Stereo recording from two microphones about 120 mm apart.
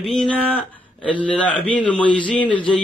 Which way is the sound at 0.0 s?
5° left (ahead or behind).